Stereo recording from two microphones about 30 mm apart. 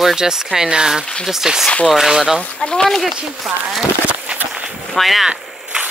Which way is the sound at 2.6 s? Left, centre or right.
Left.